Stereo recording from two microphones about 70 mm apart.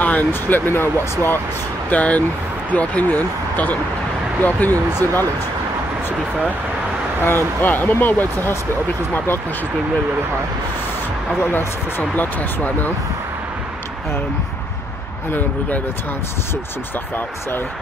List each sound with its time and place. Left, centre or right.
0.0 s speech: left
1.9 s speech: left
7.2 s speech: left
11.5 s speech: left